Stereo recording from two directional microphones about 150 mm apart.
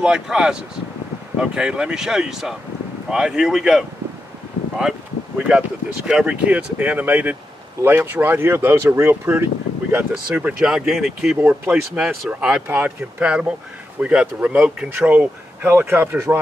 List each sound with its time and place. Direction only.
0.0 s speech: 5° right (ahead or behind)
5.5 s speech: 5° right (ahead or behind)